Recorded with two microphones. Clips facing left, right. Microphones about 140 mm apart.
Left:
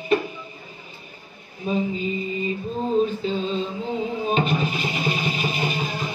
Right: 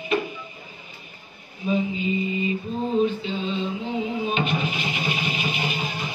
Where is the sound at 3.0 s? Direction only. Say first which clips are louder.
Left 1 dB; 40° left (ahead or behind).